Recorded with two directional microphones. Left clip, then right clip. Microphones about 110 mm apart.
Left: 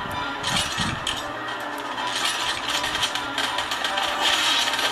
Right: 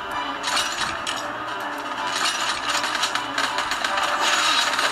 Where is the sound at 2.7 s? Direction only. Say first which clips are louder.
Right 1 dB; 45° right (ahead or behind).